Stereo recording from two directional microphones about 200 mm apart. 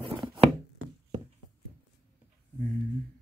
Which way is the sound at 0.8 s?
80° right.